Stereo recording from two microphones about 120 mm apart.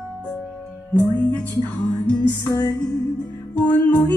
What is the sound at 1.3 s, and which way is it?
Music, 10° left (ahead or behind).